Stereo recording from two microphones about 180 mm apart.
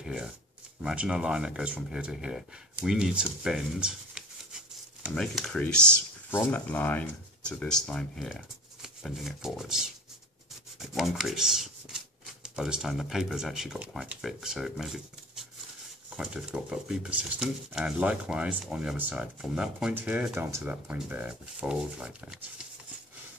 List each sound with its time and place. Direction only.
0.0 s a sound: 5° right (ahead or behind)
0.8 s speech: 5° right (ahead or behind)
10.8 s rub: centre (ahead or behind)
12.4 s speech: 5° right (ahead or behind)
16.2 s speech: 5° right (ahead or behind)